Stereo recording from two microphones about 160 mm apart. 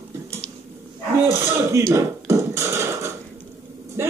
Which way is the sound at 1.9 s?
20° right (ahead or behind).